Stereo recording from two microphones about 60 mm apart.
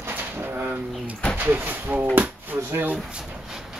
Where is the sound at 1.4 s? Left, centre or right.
Right.